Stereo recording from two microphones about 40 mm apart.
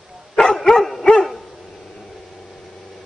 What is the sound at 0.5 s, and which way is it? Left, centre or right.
Dog, centre.